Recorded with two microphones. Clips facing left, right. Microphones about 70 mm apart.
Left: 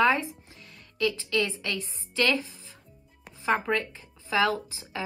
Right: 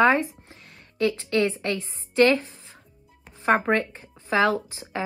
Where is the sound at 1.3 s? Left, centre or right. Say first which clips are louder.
Right 5 dB; right.